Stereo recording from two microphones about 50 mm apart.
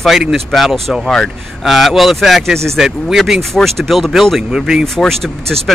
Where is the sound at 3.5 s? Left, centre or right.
Centre.